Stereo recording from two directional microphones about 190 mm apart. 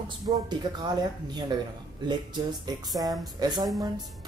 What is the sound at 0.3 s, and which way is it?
Speech, 20° right (ahead or behind).